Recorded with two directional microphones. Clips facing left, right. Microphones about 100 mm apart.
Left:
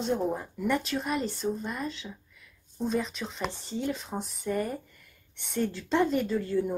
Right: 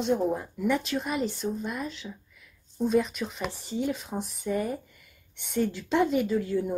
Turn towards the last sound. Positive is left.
turn(degrees=-5)  # may be behind; listen again after turning